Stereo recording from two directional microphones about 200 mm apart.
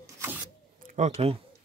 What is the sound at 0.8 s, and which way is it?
Speech, 35° right (ahead or behind).